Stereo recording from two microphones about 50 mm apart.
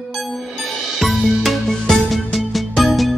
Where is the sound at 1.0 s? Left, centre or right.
Centre.